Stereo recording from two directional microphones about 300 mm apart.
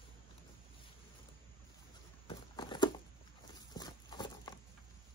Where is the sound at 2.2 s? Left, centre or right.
Centre.